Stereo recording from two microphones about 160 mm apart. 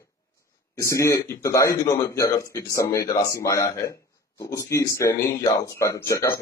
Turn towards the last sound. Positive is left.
turn(degrees=20)  # may be behind; listen again after turning